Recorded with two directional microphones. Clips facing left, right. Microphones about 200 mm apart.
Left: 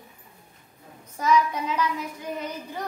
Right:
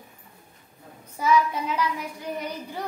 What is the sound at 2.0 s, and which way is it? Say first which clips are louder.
Speech: even; 10° right (ahead or behind).